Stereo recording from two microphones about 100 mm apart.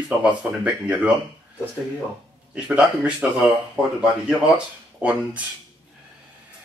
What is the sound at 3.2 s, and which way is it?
Speech, 15° right (ahead or behind).